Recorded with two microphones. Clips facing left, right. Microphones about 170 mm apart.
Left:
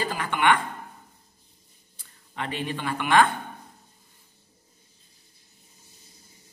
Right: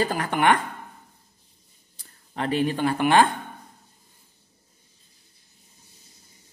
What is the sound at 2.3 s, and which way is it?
Speech, 35° right (ahead or behind).